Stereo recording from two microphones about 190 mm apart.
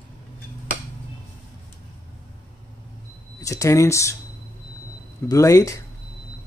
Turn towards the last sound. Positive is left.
turn(degrees=15)  # may be behind; listen again after turning